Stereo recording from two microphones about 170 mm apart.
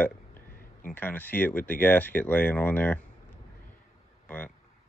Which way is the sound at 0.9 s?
10° left (ahead or behind).